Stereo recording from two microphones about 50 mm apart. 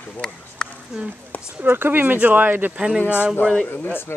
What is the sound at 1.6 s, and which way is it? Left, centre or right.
Speech, right.